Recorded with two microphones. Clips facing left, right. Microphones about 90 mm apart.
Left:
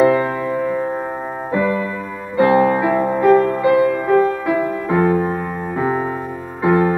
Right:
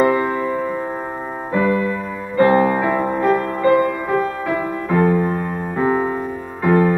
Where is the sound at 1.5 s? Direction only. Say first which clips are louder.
Right 1 dB; 5° left (ahead or behind).